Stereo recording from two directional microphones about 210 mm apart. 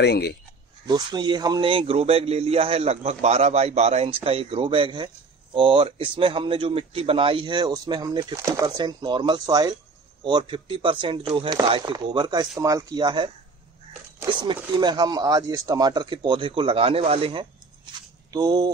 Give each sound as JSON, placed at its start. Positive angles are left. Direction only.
{"t": 0.0, "sound": "speech", "side_deg": 50}
{"t": 0.8, "sound": "speech", "side_deg": -20}